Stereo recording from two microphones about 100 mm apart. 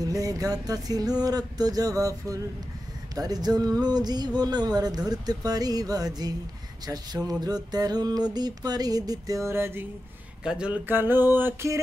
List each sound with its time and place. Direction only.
0.0 s mantra: 35° right (ahead or behind)
10.4 s speech: 10° right (ahead or behind)
10.9 s music: 20° right (ahead or behind)